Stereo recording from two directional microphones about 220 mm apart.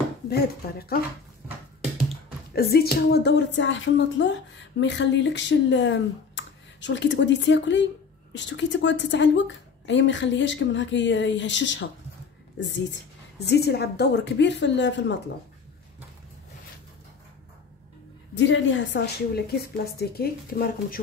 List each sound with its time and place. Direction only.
0.3 s a woman's voice: 45° left (ahead or behind)
2.5 s a woman's voice: 45° left (ahead or behind)
18.3 s a woman's voice: 55° left (ahead or behind)